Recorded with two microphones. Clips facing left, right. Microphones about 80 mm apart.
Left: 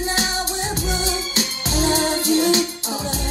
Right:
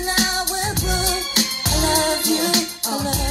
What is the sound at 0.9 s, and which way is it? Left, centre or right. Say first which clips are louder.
Music: right 1 dB; left.